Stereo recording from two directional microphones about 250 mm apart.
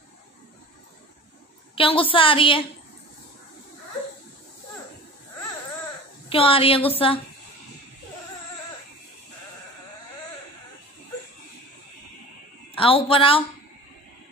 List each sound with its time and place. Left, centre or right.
1.8 s a woman's voice: left
6.2 s a woman's voice: left
12.7 s a woman's voice: left